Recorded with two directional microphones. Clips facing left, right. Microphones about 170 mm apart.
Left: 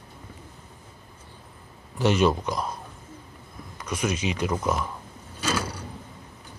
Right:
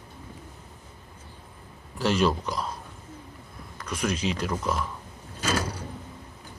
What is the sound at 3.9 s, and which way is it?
Speech, 5° left (ahead or behind).